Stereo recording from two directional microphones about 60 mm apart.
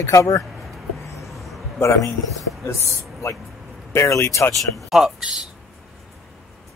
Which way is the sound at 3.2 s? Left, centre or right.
Left.